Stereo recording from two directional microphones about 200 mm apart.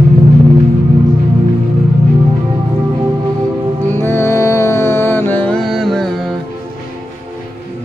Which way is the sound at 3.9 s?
10° left (ahead or behind).